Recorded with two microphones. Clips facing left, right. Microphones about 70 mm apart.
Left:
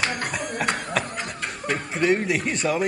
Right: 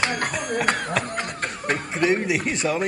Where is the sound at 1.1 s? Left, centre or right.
Right.